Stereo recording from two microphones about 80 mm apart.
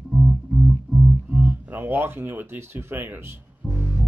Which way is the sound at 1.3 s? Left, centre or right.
Right.